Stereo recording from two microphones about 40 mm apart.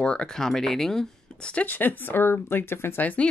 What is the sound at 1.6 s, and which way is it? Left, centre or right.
Speech, left.